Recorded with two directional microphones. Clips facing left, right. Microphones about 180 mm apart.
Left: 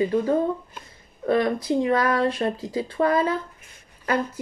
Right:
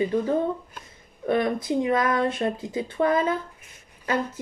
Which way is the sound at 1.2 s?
20° right (ahead or behind).